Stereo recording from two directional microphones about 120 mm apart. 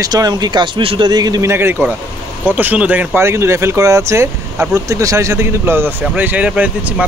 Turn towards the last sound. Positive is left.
turn(degrees=-10)  # may be behind; listen again after turning